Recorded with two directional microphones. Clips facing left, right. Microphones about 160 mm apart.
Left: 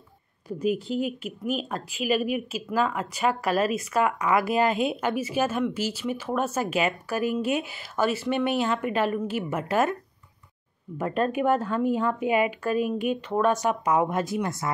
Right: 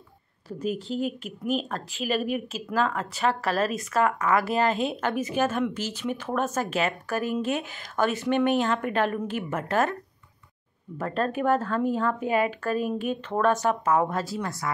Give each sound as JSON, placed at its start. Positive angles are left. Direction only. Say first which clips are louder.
{"t": 0.5, "sound": "speech", "louder": "left 3 dB", "side_deg": 10}
{"t": 11.0, "sound": "speech", "louder": "left 2 dB", "side_deg": 15}